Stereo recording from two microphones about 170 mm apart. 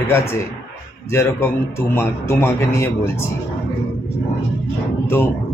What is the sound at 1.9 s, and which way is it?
Speech, 15° left (ahead or behind).